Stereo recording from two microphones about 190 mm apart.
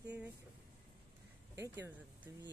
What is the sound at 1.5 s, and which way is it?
Speech, 15° right (ahead or behind).